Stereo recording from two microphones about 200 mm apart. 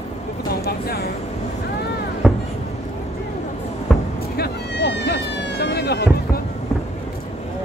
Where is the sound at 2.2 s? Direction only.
Centre (ahead or behind).